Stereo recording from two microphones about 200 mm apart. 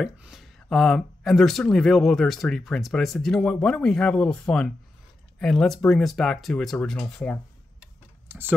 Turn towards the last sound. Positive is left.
turn(degrees=5)  # may be behind; listen again after turning